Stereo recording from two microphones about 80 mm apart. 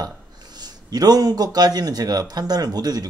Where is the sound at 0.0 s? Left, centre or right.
Right.